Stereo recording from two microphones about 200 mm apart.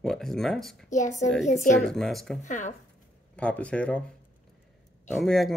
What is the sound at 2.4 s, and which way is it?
Speech, 40° left (ahead or behind).